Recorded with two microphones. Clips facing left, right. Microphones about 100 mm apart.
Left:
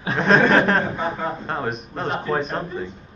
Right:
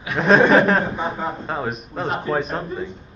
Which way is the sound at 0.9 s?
15° right (ahead or behind).